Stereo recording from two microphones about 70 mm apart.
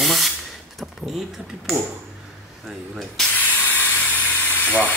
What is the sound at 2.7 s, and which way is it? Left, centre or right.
Speech, centre.